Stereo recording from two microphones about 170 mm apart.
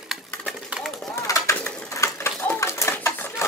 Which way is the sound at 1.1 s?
15° left (ahead or behind).